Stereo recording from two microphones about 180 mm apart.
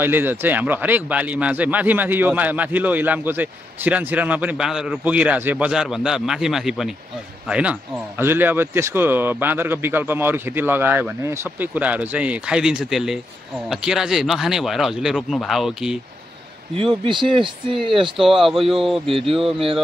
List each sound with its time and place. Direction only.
0.0 s speech: 10° right (ahead or behind)
16.7 s speech: 30° right (ahead or behind)
18.1 s speech: centre (ahead or behind)
19.0 s speech: 30° right (ahead or behind)